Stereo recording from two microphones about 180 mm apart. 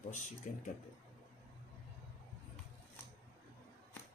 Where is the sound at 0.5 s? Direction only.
45° left (ahead or behind).